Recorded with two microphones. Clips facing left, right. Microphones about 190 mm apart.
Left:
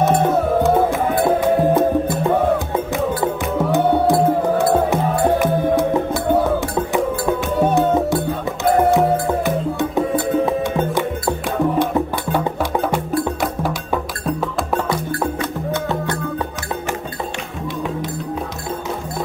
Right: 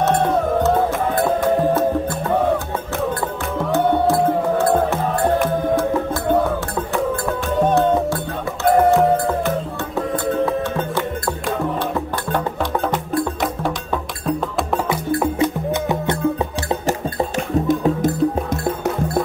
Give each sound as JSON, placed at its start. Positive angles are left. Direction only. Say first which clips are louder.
{"t": 0.0, "sound": "music", "louder": "left 1 dB", "side_deg": 5}
{"t": 3.2, "sound": "music", "louder": "left 4 dB", "side_deg": 5}
{"t": 4.9, "sound": "music", "louder": "left 2 dB", "side_deg": 15}
{"t": 7.5, "sound": "music", "louder": "right 1 dB", "side_deg": 10}
{"t": 9.8, "sound": "music", "louder": "left 4 dB", "side_deg": 15}
{"t": 15.0, "sound": "music", "louder": "right 4 dB", "side_deg": -20}
{"t": 17.6, "sound": "music", "louder": "right 5 dB", "side_deg": -45}